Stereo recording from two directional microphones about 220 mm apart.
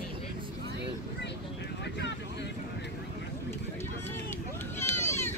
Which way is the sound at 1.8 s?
50° left (ahead or behind).